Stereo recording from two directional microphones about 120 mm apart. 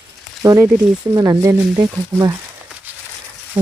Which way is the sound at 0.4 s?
25° right (ahead or behind).